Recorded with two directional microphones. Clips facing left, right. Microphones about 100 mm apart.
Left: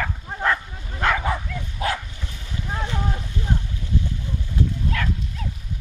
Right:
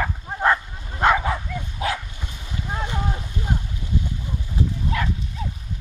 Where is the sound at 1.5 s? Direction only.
10° right (ahead or behind).